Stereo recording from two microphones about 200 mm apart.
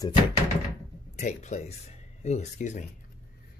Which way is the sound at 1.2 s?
35° left (ahead or behind).